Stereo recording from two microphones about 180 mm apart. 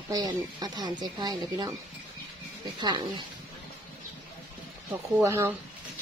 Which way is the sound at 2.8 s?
25° right (ahead or behind).